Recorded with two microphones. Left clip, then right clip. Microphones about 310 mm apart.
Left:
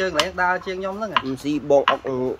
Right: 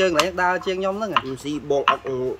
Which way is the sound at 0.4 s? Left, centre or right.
Right.